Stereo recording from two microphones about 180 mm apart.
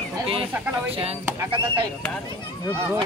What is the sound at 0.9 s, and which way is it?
Speech, 35° right (ahead or behind).